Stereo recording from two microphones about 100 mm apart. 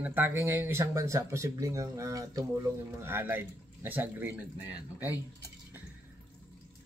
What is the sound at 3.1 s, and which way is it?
Speech, 20° right (ahead or behind).